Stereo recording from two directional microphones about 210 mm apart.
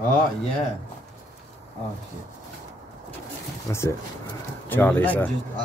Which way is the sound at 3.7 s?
15° left (ahead or behind).